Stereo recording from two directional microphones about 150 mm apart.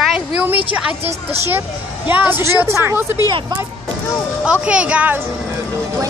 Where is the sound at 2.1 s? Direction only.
15° right (ahead or behind).